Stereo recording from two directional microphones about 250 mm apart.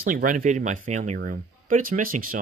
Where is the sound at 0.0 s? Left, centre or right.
Right.